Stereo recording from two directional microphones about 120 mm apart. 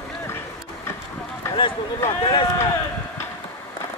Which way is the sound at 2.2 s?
50° left (ahead or behind).